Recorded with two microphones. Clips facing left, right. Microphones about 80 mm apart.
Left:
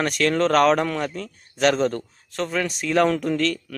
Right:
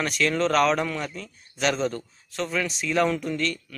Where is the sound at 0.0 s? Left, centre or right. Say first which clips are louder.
Left 3 dB; left.